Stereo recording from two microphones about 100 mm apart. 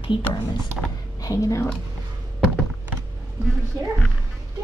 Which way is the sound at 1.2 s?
35° left (ahead or behind).